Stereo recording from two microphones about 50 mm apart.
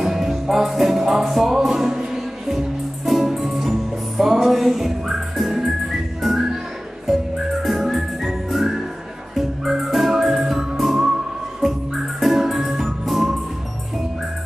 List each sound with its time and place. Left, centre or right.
0.0 s music: centre
3.1 s music: centre
7.6 s music: centre
11.6 s organ: centre